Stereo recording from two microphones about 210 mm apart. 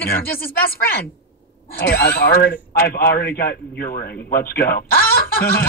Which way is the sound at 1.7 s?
45° left (ahead or behind).